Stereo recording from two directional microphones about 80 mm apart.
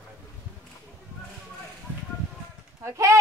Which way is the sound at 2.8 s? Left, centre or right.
Right.